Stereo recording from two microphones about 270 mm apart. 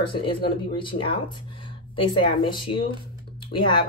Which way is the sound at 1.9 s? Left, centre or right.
Centre.